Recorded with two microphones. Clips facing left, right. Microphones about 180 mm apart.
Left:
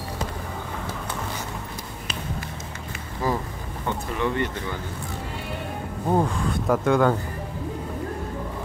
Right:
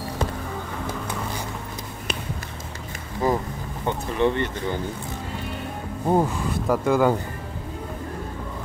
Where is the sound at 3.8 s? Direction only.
25° right (ahead or behind).